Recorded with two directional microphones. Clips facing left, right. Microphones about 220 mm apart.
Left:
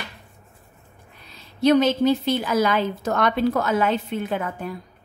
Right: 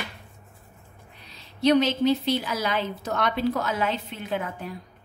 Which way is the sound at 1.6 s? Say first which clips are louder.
Left 3 dB; 50° left (ahead or behind).